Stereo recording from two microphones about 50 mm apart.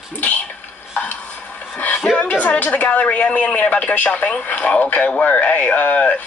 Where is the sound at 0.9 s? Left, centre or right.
Left.